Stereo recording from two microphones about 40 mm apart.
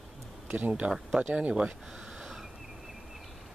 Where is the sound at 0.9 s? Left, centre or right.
Centre.